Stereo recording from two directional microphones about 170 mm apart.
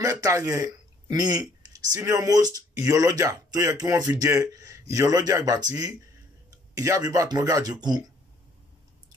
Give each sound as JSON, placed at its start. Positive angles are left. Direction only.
{"t": 0.0, "sound": "a man's voice", "side_deg": -20}